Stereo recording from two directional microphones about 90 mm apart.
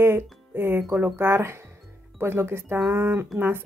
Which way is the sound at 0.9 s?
25° right (ahead or behind).